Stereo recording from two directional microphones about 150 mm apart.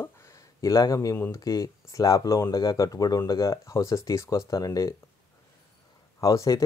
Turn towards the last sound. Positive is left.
turn(degrees=25)  # may be behind; listen again after turning